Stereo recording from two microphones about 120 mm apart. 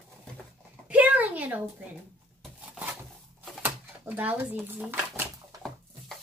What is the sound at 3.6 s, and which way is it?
Speech, 15° right (ahead or behind).